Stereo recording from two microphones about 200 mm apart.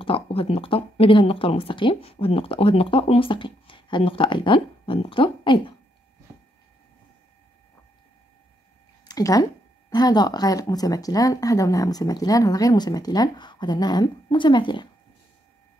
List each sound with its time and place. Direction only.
0.0 s speech: 25° left (ahead or behind)
9.0 s speech: 20° left (ahead or behind)